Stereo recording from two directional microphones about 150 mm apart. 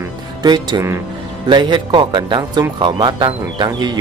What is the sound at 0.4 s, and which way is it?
Speech, 25° right (ahead or behind).